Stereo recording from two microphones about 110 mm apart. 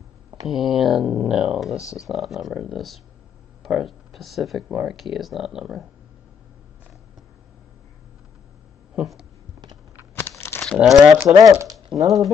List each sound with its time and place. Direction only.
0.5 s speech: centre (ahead or behind)
8.9 s speech: 5° right (ahead or behind)
10.1 s a sound: 20° left (ahead or behind)
10.8 s speech: 5° right (ahead or behind)
11.3 s speech: 30° right (ahead or behind)